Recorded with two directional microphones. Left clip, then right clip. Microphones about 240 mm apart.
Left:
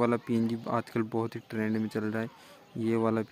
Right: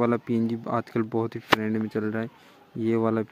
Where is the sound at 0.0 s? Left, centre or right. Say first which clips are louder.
Right 3 dB; centre.